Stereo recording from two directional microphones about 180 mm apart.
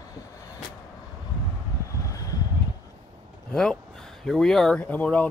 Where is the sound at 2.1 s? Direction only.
20° left (ahead or behind).